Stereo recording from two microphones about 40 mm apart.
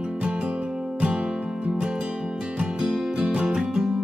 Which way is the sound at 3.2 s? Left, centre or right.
Right.